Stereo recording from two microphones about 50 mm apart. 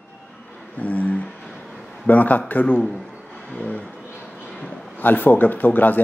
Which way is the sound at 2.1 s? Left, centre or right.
Left.